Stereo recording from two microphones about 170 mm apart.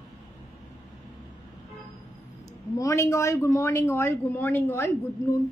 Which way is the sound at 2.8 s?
20° left (ahead or behind).